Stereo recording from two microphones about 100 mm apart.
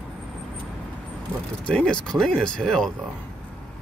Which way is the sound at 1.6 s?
10° left (ahead or behind).